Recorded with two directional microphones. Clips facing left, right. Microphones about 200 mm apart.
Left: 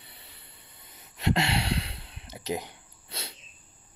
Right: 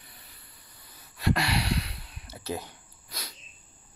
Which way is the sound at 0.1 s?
25° left (ahead or behind).